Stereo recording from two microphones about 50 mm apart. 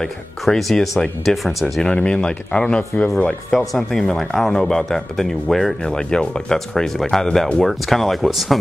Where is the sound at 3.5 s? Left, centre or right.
Centre.